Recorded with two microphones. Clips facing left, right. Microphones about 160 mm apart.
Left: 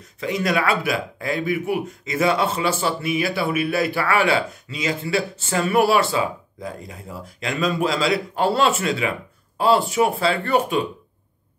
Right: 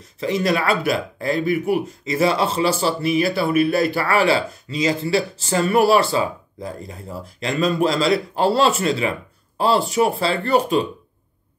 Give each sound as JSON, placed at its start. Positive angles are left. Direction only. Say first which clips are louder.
{"t": 0.2, "sound": "speech", "louder": "right 2 dB", "side_deg": -35}